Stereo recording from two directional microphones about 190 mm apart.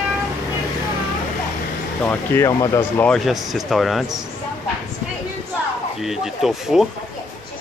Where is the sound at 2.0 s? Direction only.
15° left (ahead or behind).